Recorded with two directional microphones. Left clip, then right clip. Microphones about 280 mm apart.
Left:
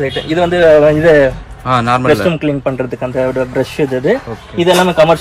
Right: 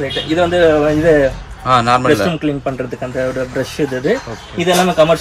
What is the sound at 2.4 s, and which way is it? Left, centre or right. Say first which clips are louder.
Speech: left 3 dB; centre.